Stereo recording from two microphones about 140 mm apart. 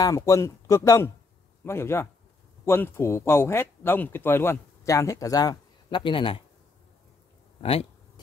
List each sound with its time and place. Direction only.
0.0 s a man's voice: 25° left (ahead or behind)